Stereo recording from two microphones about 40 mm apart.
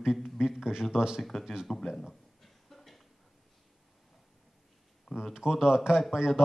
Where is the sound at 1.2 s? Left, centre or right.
Centre.